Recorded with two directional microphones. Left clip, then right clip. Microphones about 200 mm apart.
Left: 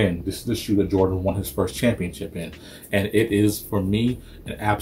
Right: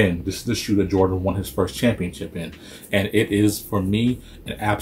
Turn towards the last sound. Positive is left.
turn(degrees=0)  # may be behind; listen again after turning